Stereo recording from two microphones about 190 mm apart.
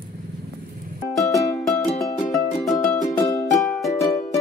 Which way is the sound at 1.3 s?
15° left (ahead or behind).